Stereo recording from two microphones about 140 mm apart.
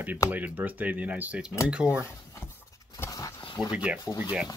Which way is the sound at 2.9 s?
25° left (ahead or behind).